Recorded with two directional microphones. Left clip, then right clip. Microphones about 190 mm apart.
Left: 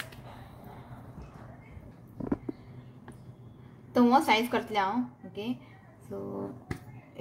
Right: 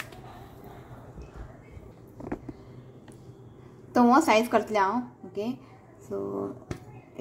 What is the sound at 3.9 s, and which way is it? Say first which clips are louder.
A woman's voice: right 3 dB; 25° right (ahead or behind).